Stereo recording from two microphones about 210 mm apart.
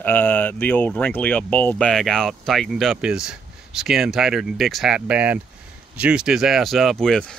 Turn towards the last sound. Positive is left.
turn(degrees=5)  # may be behind; listen again after turning